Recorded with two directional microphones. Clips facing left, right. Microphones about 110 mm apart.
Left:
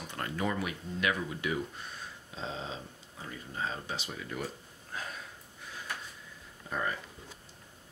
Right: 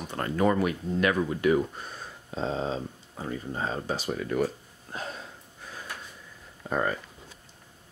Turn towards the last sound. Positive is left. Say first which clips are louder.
# right 7 dB
turn(degrees=-50)  # may be behind; listen again after turning